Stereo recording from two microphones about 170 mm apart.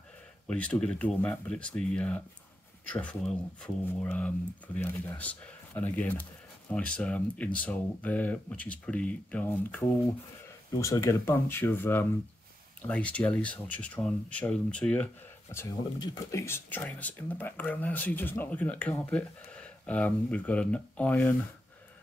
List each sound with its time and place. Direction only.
0.5 s speech: 5° left (ahead or behind)